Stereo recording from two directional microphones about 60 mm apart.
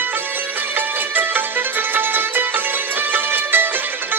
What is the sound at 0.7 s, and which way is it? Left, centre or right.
Music, right.